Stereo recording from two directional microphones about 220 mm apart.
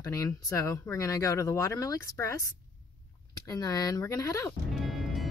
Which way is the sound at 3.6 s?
15° left (ahead or behind).